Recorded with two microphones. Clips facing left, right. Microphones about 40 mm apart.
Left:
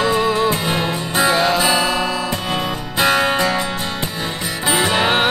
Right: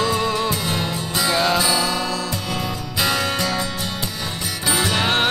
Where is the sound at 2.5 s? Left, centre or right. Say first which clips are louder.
Left 4 dB; left.